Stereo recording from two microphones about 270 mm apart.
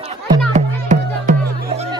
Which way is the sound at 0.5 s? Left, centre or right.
Right.